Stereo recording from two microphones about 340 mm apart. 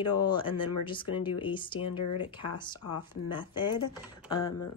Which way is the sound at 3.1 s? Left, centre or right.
Centre.